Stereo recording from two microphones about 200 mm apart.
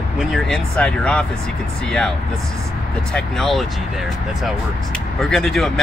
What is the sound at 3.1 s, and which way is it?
Speech, 5° left (ahead or behind).